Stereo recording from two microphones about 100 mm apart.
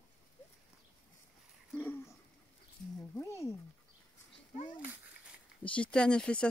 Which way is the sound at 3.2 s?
30° left (ahead or behind).